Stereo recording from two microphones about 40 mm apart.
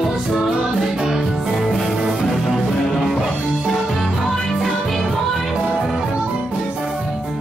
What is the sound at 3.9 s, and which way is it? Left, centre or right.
Music, centre.